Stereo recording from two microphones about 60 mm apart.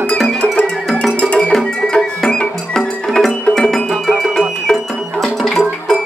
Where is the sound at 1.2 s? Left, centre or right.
Centre.